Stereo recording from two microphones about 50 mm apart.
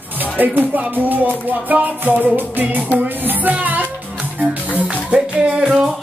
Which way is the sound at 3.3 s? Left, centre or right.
Right.